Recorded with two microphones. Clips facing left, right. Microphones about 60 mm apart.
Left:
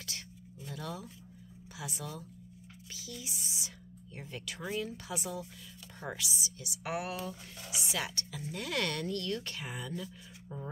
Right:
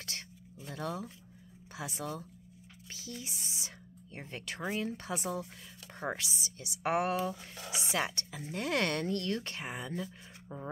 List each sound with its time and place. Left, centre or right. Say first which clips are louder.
0.7 s speech: right 4 dB; right
2.9 s a sound: right 1 dB; right
4.8 s speech: right 3 dB; right